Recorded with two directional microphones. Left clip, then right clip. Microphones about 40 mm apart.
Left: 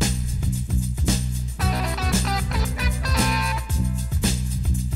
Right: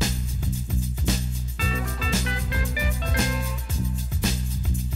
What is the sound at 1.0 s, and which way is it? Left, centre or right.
Music, left.